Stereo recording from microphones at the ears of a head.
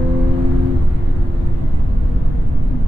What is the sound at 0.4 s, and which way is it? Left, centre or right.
Music, left.